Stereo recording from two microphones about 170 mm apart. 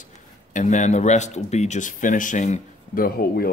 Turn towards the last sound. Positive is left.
turn(degrees=60)  # may be behind; listen again after turning